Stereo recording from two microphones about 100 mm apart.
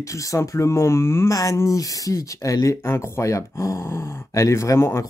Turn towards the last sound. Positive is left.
turn(degrees=25)  # may be behind; listen again after turning